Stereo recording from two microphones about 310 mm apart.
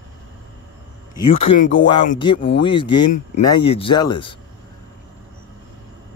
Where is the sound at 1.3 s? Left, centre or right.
Centre.